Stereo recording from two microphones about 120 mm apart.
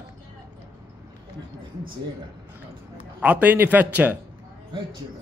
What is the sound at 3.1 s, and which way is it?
A man's voice, 10° right (ahead or behind).